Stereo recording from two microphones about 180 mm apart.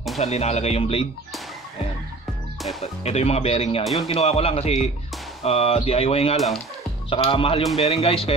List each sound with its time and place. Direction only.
0.2 s speech: 35° left (ahead or behind)
2.8 s speech: 35° left (ahead or behind)
6.3 s speech: centre (ahead or behind)
7.1 s speech: 30° left (ahead or behind)